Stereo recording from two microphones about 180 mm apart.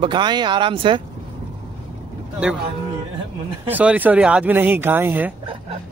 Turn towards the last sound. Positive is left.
turn(degrees=-10)  # may be behind; listen again after turning